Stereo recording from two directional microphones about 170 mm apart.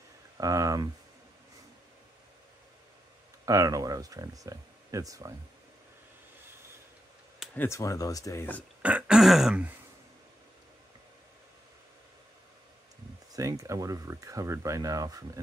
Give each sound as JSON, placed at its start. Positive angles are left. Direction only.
{"t": 0.4, "sound": "speech", "side_deg": -20}
{"t": 3.4, "sound": "speech", "side_deg": -20}
{"t": 7.5, "sound": "speech", "side_deg": 15}
{"t": 8.8, "sound": "throat clearing", "side_deg": -5}
{"t": 13.4, "sound": "speech", "side_deg": -20}